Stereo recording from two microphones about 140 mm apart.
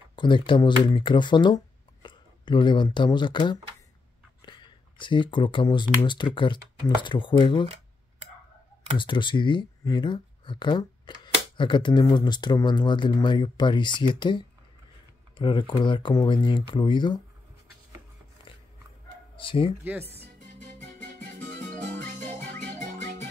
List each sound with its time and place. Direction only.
0.1 s speech: 35° left (ahead or behind)
7.6 s a sound: 50° right (ahead or behind)
8.9 s speech: 35° left (ahead or behind)
19.3 s speech: 40° left (ahead or behind)
19.8 s speech: 15° right (ahead or behind)
21.4 s music: 10° left (ahead or behind)